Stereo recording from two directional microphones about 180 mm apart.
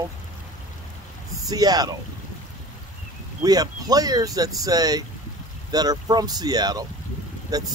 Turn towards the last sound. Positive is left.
turn(degrees=-20)  # may be behind; listen again after turning